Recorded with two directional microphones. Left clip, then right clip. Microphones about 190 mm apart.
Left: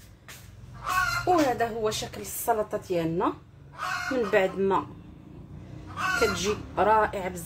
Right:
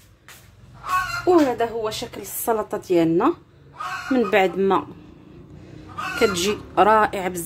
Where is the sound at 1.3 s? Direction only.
40° right (ahead or behind).